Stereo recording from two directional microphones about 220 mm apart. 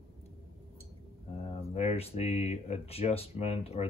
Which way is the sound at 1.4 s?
30° left (ahead or behind).